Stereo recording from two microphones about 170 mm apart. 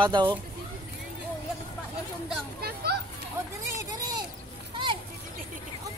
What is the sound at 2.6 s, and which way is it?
Children playing, 70° right (ahead or behind).